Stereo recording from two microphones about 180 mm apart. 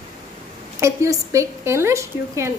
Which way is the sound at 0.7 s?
15° right (ahead or behind).